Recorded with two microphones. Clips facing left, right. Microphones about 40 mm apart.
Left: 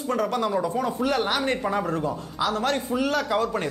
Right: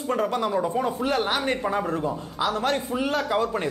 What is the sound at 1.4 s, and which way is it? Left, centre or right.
Speech, centre.